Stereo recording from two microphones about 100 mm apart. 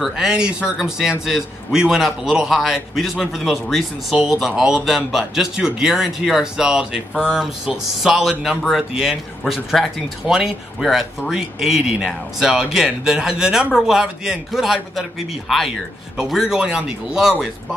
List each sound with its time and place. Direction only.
0.0 s speech: 5° right (ahead or behind)